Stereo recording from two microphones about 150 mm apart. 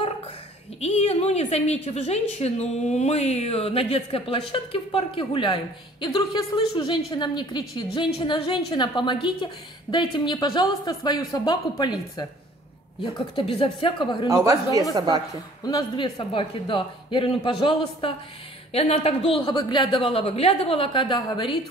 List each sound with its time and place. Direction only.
0.7 s a woman's voice: 45° left (ahead or behind)
14.3 s speech: 20° right (ahead or behind)
15.6 s a woman's voice: 25° left (ahead or behind)